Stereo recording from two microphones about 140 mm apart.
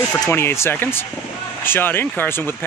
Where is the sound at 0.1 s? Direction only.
15° left (ahead or behind).